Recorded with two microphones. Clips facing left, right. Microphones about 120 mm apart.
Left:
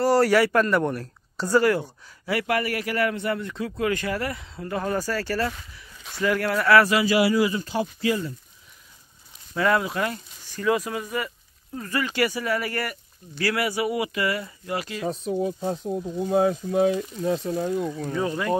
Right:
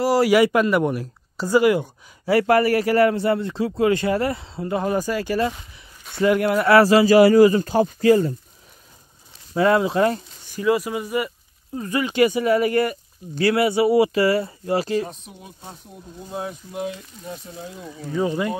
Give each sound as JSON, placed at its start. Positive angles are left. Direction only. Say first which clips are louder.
{"t": 0.0, "sound": "speech", "louder": "right 2 dB", "side_deg": -10}
{"t": 2.2, "sound": "a man's voice", "louder": "right 8 dB", "side_deg": -35}
{"t": 9.5, "sound": "a man's voice", "louder": "right 5 dB", "side_deg": -25}
{"t": 10.5, "sound": "a man's voice", "louder": "right 3 dB", "side_deg": -5}
{"t": 15.7, "sound": "speech", "louder": "left 13 dB", "side_deg": 90}
{"t": 18.1, "sound": "speech", "louder": "right 6 dB", "side_deg": -15}